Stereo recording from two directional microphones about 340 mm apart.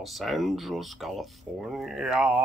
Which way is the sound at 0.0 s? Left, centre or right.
Centre.